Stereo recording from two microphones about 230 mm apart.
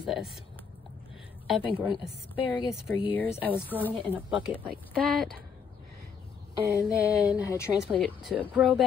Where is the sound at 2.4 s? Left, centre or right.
Left.